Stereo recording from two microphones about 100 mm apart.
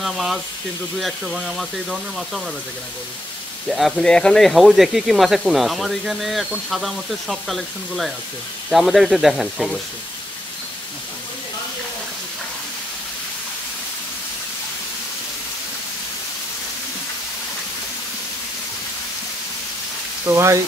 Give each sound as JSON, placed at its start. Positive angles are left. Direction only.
{"t": 0.0, "sound": "speech", "side_deg": 0}
{"t": 3.6, "sound": "speech", "side_deg": 0}
{"t": 20.2, "sound": "speech", "side_deg": -30}